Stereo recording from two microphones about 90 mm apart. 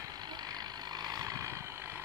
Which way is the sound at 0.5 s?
45° right (ahead or behind).